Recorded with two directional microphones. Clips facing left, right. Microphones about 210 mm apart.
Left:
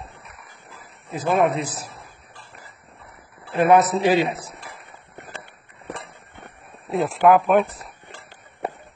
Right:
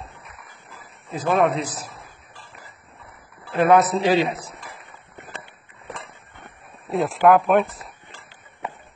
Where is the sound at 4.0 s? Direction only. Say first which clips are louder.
Even; 15° left (ahead or behind).